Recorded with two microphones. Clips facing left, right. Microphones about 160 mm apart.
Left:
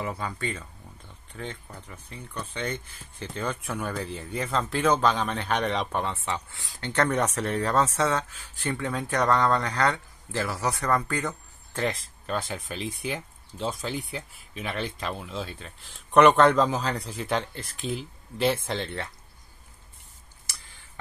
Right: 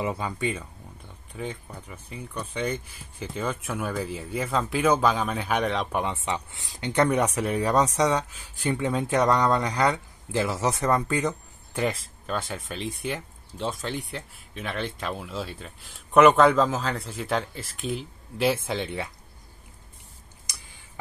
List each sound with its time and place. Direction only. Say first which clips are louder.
0.0 s speech: right 4 dB; 15° right (ahead or behind); by 5.9 s centre (ahead or behind)
5.9 s speech: right 2 dB; 15° right (ahead or behind)
11.8 s speech: right 2 dB; centre (ahead or behind)
20.4 s a sound: even; 15° right (ahead or behind)